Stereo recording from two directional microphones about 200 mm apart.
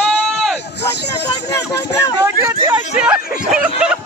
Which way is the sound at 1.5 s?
15° left (ahead or behind).